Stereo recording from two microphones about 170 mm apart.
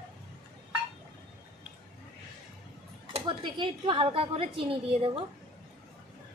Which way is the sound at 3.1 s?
30° right (ahead or behind).